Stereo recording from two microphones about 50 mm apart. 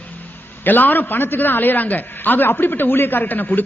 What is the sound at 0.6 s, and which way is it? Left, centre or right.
A woman's voice, left.